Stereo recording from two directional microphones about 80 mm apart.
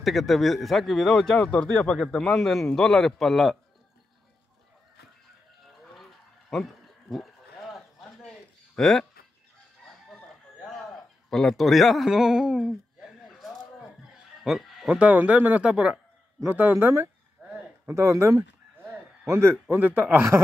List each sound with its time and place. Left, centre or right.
0.0 s speech: centre
6.5 s goat: centre
8.2 s a sound: centre
10.6 s a man's voice: centre
13.3 s a sound: centre
14.9 s speech: centre
16.4 s a man's voice: right
19.7 s speech: right